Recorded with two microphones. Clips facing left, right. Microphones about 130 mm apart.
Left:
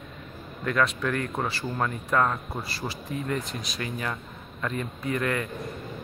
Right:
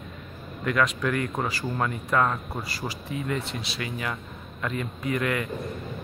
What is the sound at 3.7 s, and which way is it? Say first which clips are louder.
Speech: left 1 dB; 10° right (ahead or behind).